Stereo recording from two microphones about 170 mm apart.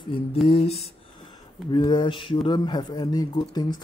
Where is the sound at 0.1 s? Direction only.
30° left (ahead or behind).